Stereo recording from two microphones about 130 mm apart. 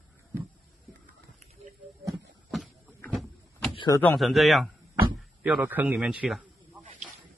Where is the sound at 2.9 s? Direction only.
15° left (ahead or behind).